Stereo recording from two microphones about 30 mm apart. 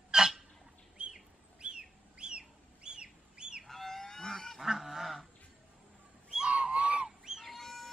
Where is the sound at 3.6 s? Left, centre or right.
Centre.